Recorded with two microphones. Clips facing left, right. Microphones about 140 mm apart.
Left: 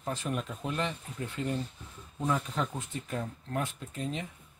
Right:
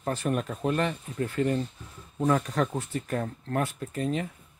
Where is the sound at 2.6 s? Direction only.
70° right (ahead or behind); by 4.1 s 55° right (ahead or behind).